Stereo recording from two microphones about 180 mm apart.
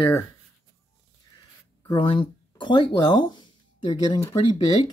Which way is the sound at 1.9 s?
25° left (ahead or behind).